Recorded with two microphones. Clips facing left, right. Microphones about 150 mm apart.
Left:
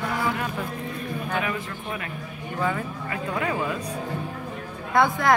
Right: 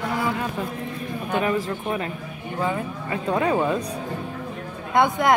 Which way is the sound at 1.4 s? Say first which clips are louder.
Right 6 dB; 35° right (ahead or behind).